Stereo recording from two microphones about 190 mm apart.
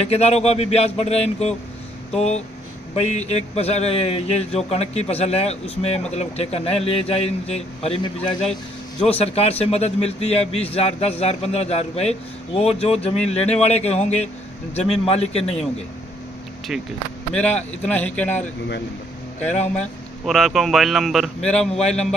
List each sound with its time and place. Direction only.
0.0 s a man's voice: 35° left (ahead or behind)
3.1 s a man's voice: 35° left (ahead or behind)
17.3 s speech: 5° left (ahead or behind)